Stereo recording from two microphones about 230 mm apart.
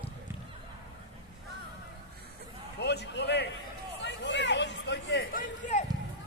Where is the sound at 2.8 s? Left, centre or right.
Left.